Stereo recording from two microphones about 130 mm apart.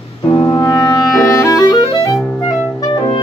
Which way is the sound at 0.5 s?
30° left (ahead or behind).